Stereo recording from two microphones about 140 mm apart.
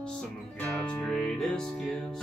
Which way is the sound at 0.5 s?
10° left (ahead or behind).